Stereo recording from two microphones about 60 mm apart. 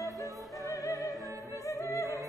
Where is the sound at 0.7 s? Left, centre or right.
Left.